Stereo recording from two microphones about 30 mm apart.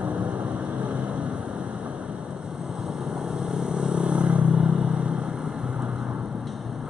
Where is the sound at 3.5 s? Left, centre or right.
Right.